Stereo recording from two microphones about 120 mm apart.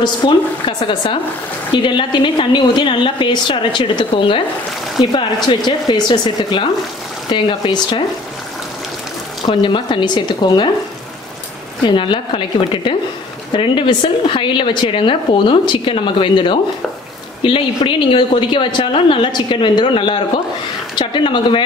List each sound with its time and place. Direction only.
0.0 s speech: 40° left (ahead or behind)
9.5 s speech: 45° left (ahead or behind)
11.8 s speech: 40° left (ahead or behind)